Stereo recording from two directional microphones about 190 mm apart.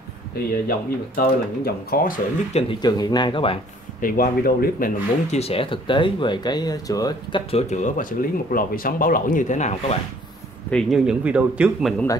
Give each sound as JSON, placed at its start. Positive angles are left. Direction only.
{"t": 0.5, "sound": "speech", "side_deg": 50}
{"t": 2.8, "sound": "speech", "side_deg": 20}
{"t": 4.0, "sound": "speech", "side_deg": 50}
{"t": 5.4, "sound": "speech", "side_deg": 30}
{"t": 7.5, "sound": "speech", "side_deg": 40}
{"t": 10.7, "sound": "speech", "side_deg": 0}